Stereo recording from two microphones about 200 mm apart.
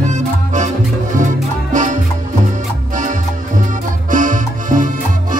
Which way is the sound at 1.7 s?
40° right (ahead or behind).